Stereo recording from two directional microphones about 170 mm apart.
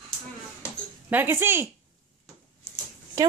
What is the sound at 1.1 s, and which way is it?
Speech, 10° right (ahead or behind).